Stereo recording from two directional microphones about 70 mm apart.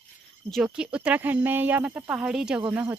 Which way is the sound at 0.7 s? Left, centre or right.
Centre.